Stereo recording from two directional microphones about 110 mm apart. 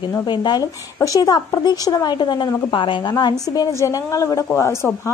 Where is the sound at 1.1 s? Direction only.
35° left (ahead or behind).